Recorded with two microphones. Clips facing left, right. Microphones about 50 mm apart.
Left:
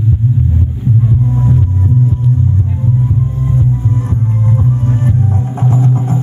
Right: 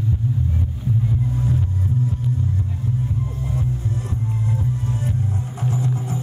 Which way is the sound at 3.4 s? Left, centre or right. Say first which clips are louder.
Left 11 dB; left.